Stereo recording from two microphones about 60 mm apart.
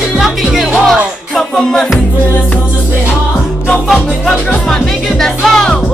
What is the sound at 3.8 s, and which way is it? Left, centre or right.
Music, centre.